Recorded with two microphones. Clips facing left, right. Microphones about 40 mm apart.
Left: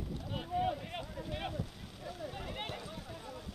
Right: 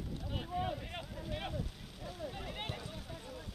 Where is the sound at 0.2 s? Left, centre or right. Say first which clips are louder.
Left 4 dB; centre.